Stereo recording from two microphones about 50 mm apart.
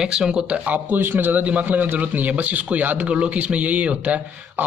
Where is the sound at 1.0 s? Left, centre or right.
Right.